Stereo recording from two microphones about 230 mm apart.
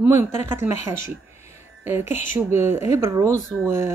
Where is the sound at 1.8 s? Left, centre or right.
Centre.